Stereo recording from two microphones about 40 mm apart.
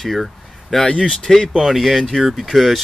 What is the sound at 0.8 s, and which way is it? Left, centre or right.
Speech, left.